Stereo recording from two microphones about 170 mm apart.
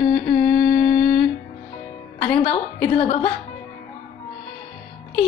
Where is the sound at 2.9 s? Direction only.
35° left (ahead or behind).